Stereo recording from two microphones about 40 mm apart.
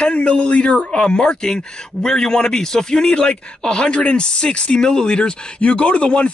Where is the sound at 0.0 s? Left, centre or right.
Left.